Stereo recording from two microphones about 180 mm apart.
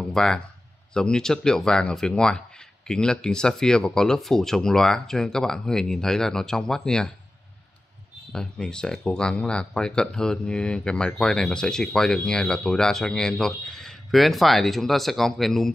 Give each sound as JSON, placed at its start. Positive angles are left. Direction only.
{"t": 0.1, "sound": "speech", "side_deg": 5}
{"t": 8.3, "sound": "speech", "side_deg": 5}